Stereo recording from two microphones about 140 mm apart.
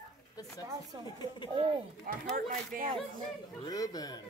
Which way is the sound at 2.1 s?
80° right.